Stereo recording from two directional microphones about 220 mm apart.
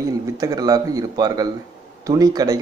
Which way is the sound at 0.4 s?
15° right (ahead or behind).